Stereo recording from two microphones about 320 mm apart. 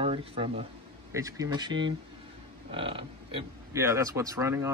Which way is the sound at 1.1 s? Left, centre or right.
Centre.